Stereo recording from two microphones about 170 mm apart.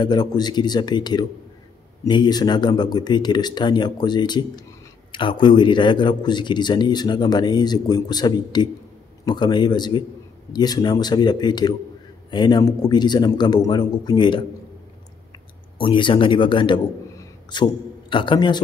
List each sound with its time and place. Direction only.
0.0 s speech: 25° left (ahead or behind)
15.8 s speech: 30° left (ahead or behind)